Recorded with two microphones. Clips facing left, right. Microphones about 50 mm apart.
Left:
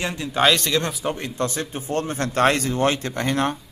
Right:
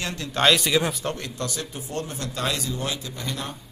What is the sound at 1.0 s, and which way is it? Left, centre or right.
Speech, centre.